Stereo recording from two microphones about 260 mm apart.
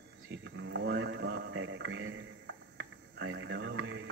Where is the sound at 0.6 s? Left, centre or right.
Right.